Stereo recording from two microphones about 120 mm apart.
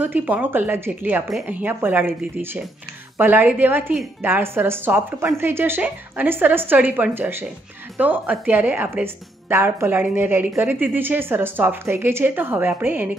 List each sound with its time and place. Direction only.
0.0 s a woman's voice: 15° right (ahead or behind)